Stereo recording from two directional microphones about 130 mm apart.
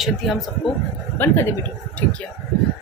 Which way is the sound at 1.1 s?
15° left (ahead or behind).